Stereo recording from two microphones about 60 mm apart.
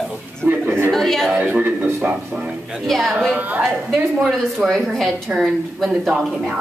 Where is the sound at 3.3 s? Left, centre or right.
Right.